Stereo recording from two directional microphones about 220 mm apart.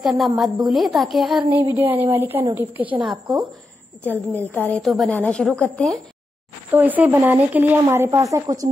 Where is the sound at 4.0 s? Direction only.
10° left (ahead or behind).